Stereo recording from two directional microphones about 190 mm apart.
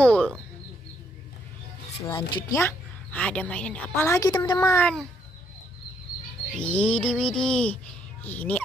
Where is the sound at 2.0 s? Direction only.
25° left (ahead or behind).